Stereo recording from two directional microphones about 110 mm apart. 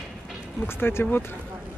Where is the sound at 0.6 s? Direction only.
20° left (ahead or behind).